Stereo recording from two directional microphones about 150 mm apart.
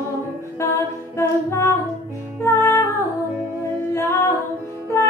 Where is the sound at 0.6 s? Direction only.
20° left (ahead or behind).